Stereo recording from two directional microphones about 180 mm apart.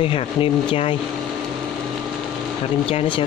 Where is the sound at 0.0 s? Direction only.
30° left (ahead or behind).